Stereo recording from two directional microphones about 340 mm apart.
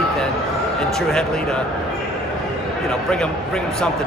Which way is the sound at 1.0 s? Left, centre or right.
Centre.